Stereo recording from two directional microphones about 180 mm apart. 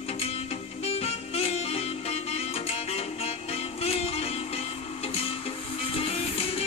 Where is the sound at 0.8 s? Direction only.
35° left (ahead or behind).